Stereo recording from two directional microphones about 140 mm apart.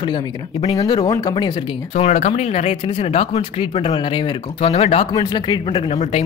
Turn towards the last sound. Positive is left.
turn(degrees=50)  # may be behind; listen again after turning